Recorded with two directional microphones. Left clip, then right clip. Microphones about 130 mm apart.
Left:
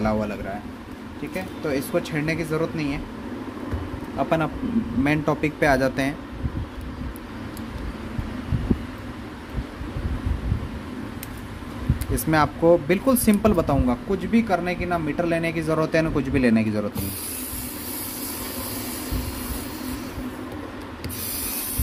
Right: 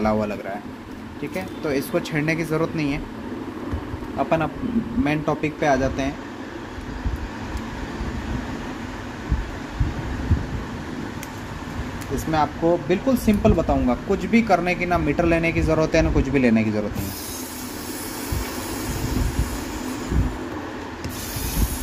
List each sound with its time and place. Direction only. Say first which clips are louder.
0.0 s speech: right 2 dB; 5° right (ahead or behind)
4.2 s speech: right 1 dB; 10° left (ahead or behind)
5.0 s speech: left 1 dB; 35° left (ahead or behind)
12.3 s speech: left 2 dB; 45° left (ahead or behind)
14.1 s speech: right 5 dB; 10° right (ahead or behind)